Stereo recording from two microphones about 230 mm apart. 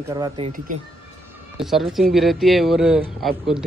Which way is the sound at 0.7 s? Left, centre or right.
Right.